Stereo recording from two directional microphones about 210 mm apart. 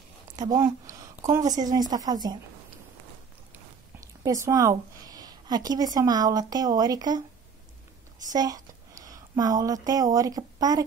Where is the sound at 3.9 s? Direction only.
15° right (ahead or behind).